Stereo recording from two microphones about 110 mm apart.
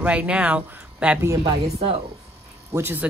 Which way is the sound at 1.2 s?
30° right (ahead or behind).